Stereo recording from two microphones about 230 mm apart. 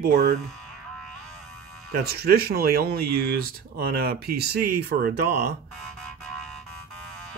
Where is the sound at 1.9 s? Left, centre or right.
Right.